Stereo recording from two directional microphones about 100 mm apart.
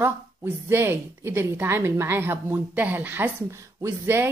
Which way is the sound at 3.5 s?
30° right (ahead or behind).